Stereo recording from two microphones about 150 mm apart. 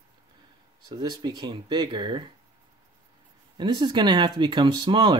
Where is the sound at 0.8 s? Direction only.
25° right (ahead or behind).